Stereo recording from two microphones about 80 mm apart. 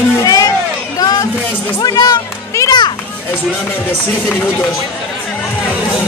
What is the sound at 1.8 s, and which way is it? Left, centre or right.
Speech, left.